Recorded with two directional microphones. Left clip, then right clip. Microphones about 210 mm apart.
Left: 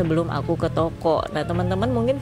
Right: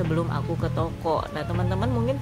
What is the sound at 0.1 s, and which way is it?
Speech, 25° left (ahead or behind).